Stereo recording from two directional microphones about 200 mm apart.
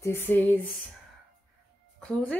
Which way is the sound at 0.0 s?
10° left (ahead or behind).